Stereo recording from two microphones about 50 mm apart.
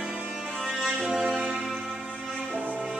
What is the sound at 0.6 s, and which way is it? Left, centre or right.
Music, centre.